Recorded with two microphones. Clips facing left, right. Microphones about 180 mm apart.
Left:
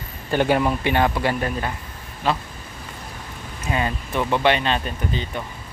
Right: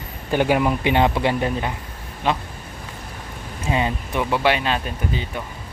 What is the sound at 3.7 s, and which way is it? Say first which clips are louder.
Speech: right 2 dB; 20° right (ahead or behind).